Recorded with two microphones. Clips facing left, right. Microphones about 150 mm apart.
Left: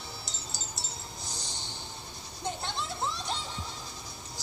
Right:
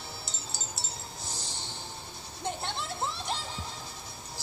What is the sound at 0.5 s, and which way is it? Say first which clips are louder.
Wind chime: right 1 dB; 30° right (ahead or behind).